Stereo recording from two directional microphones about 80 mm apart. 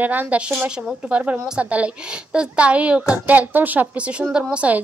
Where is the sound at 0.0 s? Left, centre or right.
Right.